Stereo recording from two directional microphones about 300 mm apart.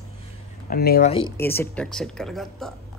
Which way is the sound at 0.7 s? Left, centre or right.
Left.